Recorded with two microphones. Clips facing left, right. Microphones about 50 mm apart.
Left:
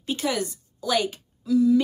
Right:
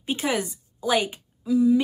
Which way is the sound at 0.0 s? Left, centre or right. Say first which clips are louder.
Right 1 dB; right.